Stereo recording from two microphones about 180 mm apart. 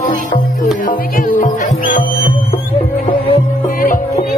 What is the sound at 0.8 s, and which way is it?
Music, 50° left (ahead or behind).